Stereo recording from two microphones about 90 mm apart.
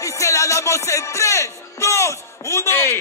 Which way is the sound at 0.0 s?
35° left (ahead or behind).